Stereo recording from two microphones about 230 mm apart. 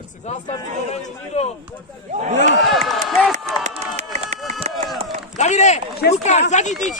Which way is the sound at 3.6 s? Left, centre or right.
Right.